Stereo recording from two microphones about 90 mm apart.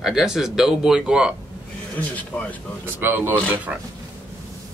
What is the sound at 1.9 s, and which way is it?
Speech, 15° left (ahead or behind).